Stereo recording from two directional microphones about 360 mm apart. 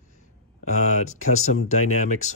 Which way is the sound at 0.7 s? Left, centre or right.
Left.